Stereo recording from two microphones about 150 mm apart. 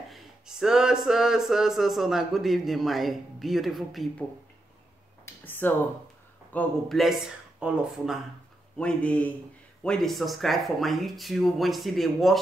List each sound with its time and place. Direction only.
0.1 s a sound: centre (ahead or behind)
1.0 s a man's voice: 5° right (ahead or behind)
5.2 s a sound: 10° left (ahead or behind)
6.5 s speech: 10° left (ahead or behind)
7.0 s a man's voice: centre (ahead or behind)
8.7 s a man's voice: 10° left (ahead or behind)